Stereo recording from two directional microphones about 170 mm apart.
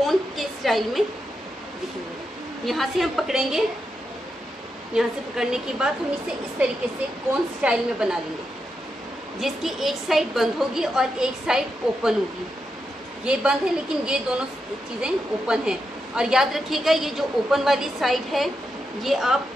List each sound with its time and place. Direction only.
0.0 s a sound: centre (ahead or behind)
2.6 s a woman's voice: centre (ahead or behind)
4.9 s a woman's voice: 5° right (ahead or behind)
9.4 s a woman's voice: centre (ahead or behind)
13.2 s a woman's voice: 5° right (ahead or behind)